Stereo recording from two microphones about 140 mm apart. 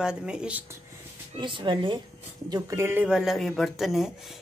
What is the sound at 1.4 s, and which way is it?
Speech, 35° right (ahead or behind).